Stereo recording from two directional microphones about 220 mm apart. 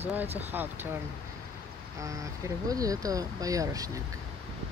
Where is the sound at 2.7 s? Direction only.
15° right (ahead or behind).